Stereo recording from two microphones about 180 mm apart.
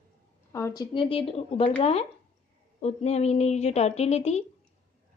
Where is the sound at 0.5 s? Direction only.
20° left (ahead or behind).